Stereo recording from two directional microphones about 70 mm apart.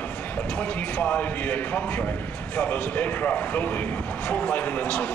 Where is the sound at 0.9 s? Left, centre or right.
Centre.